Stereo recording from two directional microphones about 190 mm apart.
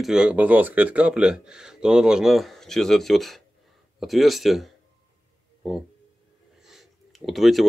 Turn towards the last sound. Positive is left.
turn(degrees=0)  # may be behind; listen again after turning